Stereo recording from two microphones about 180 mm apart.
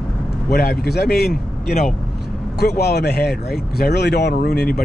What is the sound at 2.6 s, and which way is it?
Speech, 65° left (ahead or behind).